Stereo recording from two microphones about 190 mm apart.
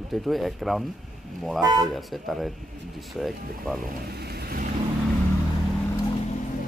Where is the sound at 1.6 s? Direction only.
20° right (ahead or behind).